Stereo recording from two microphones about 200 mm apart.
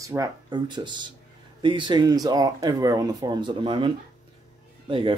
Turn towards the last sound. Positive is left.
turn(degrees=-25)  # may be behind; listen again after turning